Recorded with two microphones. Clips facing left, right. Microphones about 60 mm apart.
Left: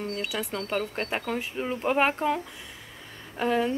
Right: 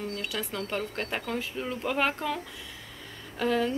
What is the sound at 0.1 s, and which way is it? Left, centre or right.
A woman's voice, left.